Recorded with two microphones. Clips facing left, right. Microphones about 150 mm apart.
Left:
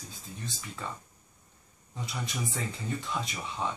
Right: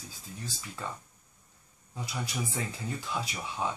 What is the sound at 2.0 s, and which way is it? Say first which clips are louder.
Speech: even; 5° right (ahead or behind).